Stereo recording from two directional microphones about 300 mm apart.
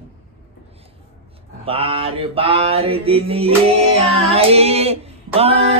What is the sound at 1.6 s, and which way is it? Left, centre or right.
Mantra, centre.